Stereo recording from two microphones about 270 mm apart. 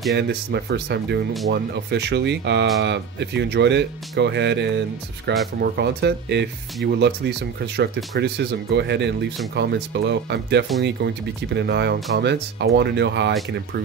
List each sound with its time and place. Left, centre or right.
0.1 s speech: right